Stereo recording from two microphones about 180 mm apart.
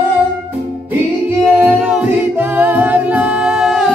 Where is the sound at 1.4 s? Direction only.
5° right (ahead or behind).